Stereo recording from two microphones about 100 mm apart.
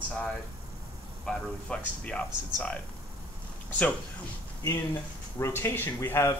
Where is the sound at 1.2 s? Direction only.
5° left (ahead or behind).